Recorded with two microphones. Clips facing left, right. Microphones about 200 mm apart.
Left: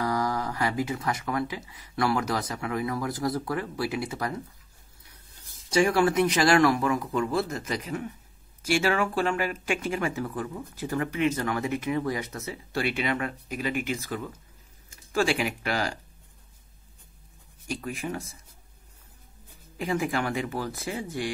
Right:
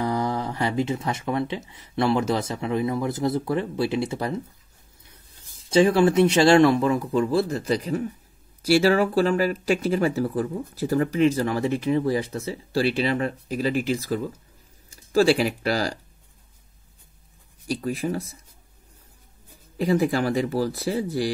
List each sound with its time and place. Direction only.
0.0 s speech: 25° right (ahead or behind)
5.7 s speech: 25° right (ahead or behind)
17.6 s speech: 35° right (ahead or behind)
19.8 s speech: 35° right (ahead or behind)